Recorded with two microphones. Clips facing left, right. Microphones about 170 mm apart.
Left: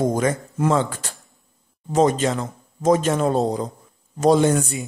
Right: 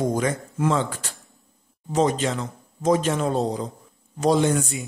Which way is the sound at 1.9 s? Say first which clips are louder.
Left 3 dB; 45° left (ahead or behind).